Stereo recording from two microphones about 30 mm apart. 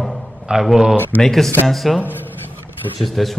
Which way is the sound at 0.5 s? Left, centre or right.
Right.